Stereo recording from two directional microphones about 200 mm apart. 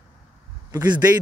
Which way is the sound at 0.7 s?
20° right (ahead or behind).